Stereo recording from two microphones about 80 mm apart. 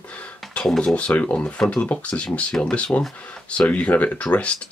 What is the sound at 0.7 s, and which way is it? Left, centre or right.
Speech, centre.